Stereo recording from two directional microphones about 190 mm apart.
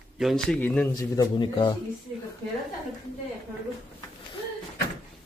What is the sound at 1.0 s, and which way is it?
Speech, 20° left (ahead or behind).